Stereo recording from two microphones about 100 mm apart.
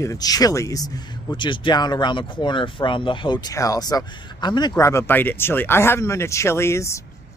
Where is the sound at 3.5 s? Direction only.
35° left (ahead or behind).